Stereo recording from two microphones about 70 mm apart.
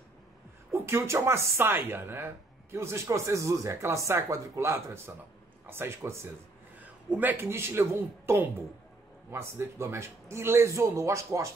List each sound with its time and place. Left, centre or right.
0.7 s speech: right
7.3 s speech: right